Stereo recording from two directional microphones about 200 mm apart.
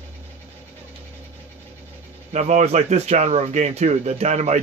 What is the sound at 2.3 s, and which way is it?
Speech, 35° right (ahead or behind).